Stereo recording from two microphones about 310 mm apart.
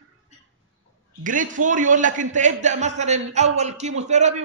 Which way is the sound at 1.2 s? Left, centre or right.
Right.